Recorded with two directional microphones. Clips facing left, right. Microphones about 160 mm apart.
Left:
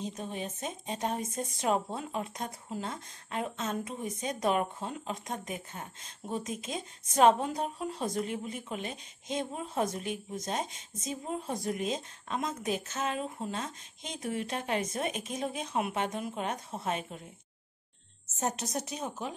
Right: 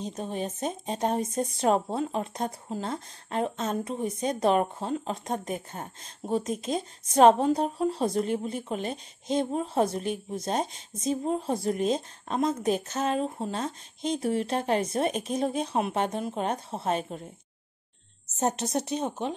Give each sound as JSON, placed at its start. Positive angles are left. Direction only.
{"t": 0.0, "sound": "speech", "side_deg": -35}
{"t": 18.4, "sound": "a woman's voice", "side_deg": -30}